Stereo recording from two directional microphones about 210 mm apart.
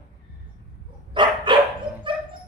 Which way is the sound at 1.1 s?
25° right (ahead or behind).